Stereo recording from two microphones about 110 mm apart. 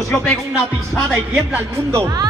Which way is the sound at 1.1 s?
25° right (ahead or behind).